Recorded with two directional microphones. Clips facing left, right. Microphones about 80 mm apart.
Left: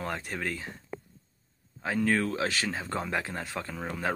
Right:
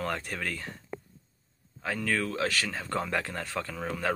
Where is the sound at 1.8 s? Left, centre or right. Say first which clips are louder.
Left 3 dB; left.